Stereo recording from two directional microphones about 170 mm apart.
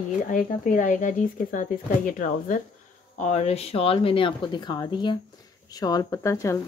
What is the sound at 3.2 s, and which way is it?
A woman's voice, 40° left (ahead or behind).